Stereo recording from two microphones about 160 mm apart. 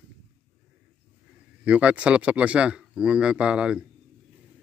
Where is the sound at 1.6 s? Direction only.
10° right (ahead or behind).